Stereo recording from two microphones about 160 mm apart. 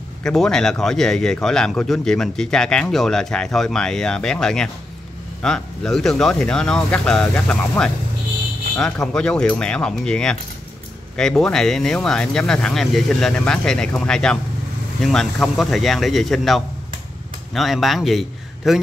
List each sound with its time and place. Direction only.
0.2 s a man's voice: 5° left (ahead or behind)